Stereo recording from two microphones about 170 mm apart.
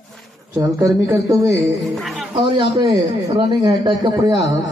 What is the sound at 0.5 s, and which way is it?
Speech, 15° right (ahead or behind).